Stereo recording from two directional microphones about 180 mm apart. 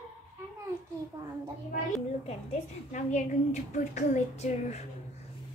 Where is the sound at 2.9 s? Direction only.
40° left (ahead or behind).